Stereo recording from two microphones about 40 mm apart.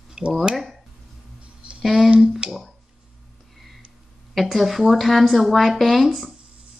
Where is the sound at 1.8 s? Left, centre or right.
Centre.